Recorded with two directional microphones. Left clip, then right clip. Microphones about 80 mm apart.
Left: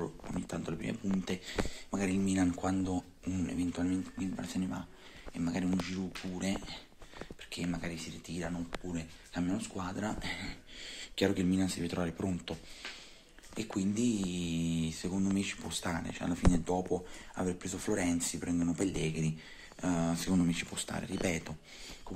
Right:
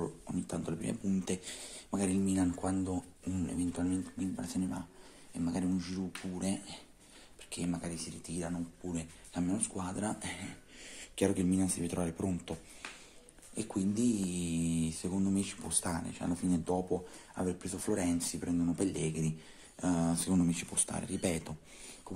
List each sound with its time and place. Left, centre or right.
0.5 s a sound: right
2.1 s speech: centre
6.5 s speech: right
8.9 s speech: right
10.2 s speech: right
13.6 s speech: right
21.1 s speech: right